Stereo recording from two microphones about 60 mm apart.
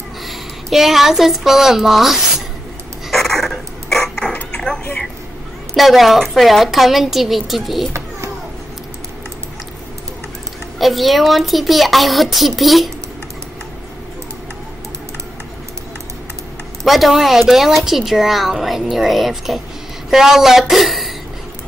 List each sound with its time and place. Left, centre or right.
0.3 s a woman's voice: centre
3.1 s a sound: centre
4.3 s a sound: left
5.8 s speech: centre
10.8 s speech: centre
16.8 s speech: centre